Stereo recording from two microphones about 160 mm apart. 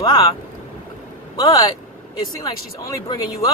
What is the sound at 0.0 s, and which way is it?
Speech, 25° left (ahead or behind).